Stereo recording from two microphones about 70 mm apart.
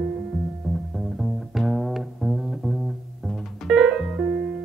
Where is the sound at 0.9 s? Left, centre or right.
Centre.